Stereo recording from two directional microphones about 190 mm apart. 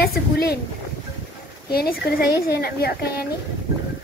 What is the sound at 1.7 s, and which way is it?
A woman's voice, 55° left (ahead or behind).